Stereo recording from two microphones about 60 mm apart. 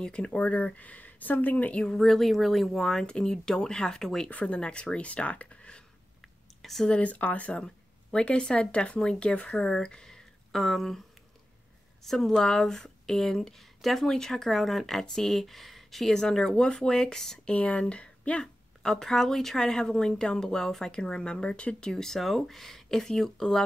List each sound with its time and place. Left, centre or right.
0.0 s speech: centre
1.8 s speech: centre
4.3 s speech: left
6.6 s speech: centre
6.9 s speech: left; by 11.0 s centre
12.0 s speech: centre
17.5 s speech: left